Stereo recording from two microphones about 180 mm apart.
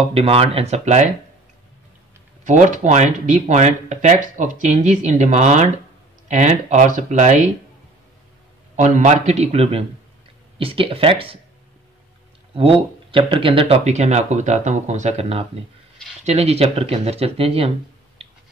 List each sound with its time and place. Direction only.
0.1 s speech: 35° right (ahead or behind)
2.4 s speech: 45° right (ahead or behind)
8.7 s speech: 40° right (ahead or behind)
12.5 s speech: 30° right (ahead or behind)